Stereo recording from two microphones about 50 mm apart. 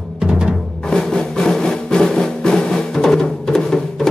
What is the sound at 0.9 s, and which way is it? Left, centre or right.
Music, centre.